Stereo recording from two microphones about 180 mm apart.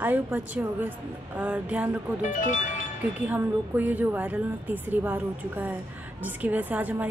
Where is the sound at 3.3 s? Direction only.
10° right (ahead or behind).